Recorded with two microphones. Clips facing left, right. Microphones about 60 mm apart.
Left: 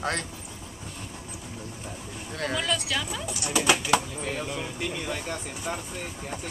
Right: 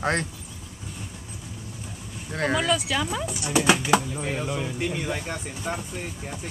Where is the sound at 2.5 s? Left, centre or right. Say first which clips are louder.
Right 4 dB; centre.